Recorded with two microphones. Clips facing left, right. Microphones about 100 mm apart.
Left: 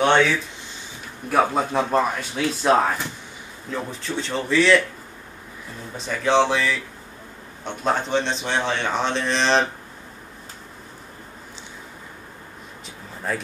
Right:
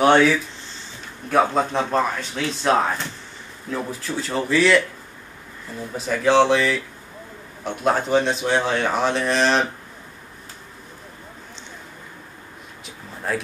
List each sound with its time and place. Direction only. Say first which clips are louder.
1.3 s a man's voice: right 1 dB; 10° left (ahead or behind)
5.9 s a man's voice: right 2 dB; centre (ahead or behind)
12.8 s a sound: right 1 dB; centre (ahead or behind)